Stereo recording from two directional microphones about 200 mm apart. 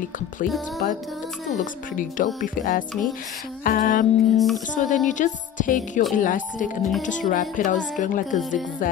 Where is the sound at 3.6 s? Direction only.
45° left (ahead or behind).